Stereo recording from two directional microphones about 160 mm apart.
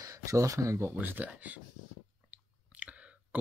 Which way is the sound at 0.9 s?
10° right (ahead or behind).